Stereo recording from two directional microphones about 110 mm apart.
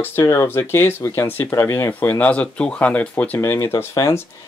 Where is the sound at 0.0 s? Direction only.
25° left (ahead or behind).